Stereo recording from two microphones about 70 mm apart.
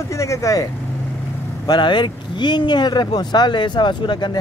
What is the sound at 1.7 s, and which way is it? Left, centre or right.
Speech, left.